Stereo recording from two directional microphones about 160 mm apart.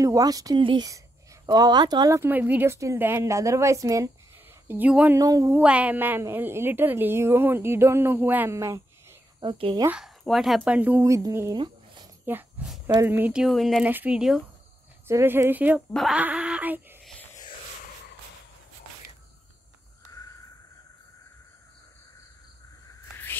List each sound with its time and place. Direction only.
0.0 s a woman's voice: 20° right (ahead or behind)
4.6 s a woman's voice: 10° right (ahead or behind)
5.2 s a woman's voice: 20° right (ahead or behind)
5.6 s a woman's voice: 10° right (ahead or behind)
9.4 s speech: 35° right (ahead or behind)
9.8 s speech: 5° right (ahead or behind); by 12.1 s 25° right (ahead or behind)
12.3 s speech: 10° right (ahead or behind)
12.8 s speech: 15° right (ahead or behind); by 13.8 s centre (ahead or behind)
13.8 s a woman's voice: 10° right (ahead or behind)
15.0 s a woman's voice: 15° right (ahead or behind)
15.9 s a sound: centre (ahead or behind)
17.0 s music: 5° left (ahead or behind)